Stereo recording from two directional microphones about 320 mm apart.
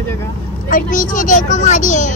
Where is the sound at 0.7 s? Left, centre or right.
Left.